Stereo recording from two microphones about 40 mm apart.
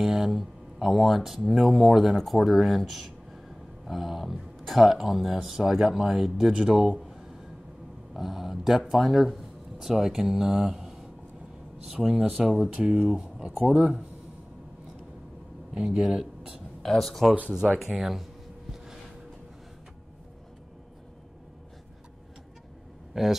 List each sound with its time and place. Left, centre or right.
0.0 s speech: centre
8.1 s speech: centre
12.7 s speech: right
15.7 s speech: centre
16.8 s speech: centre
17.7 s speech: centre
23.2 s speech: centre